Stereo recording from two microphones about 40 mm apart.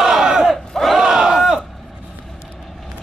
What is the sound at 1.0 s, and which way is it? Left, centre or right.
Battle cry, centre.